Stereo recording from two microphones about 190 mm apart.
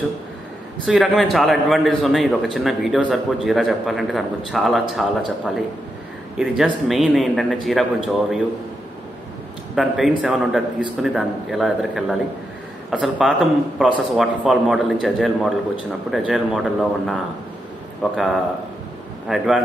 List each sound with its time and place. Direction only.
0.8 s a man's voice: centre (ahead or behind)
9.8 s a man's voice: centre (ahead or behind)